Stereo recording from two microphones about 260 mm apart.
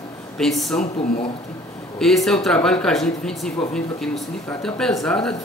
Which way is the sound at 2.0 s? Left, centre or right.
Centre.